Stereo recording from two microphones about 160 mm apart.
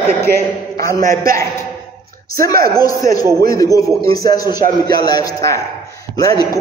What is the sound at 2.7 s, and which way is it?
A man's voice, 25° left (ahead or behind).